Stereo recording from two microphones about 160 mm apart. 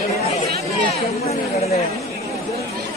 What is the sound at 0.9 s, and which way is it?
Chatter, 40° left (ahead or behind).